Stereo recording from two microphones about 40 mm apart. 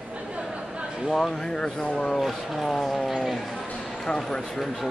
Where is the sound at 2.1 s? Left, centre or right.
Centre.